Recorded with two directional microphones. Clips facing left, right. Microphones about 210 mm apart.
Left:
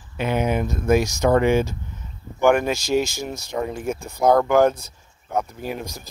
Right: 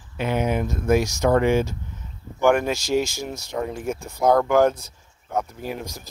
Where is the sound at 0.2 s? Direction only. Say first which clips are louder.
Left 1 dB; 15° left (ahead or behind).